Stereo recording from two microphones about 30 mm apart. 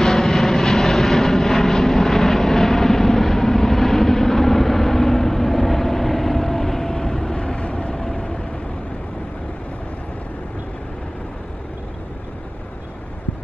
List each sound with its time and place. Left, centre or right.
0.0 s vehicle: centre
7.3 s vehicle: left
7.9 s vehicle: left